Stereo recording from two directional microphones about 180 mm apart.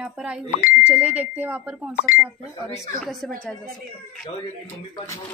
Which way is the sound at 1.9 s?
55° left (ahead or behind).